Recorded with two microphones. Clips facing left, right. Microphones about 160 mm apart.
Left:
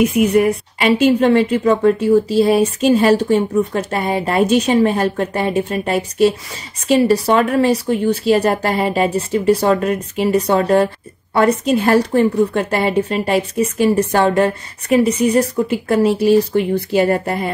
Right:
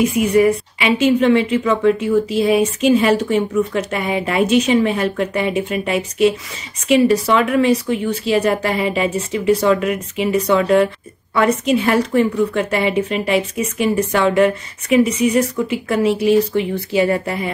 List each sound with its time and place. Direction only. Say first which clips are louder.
0.7 s a woman's voice: left 4 dB; 40° left (ahead or behind)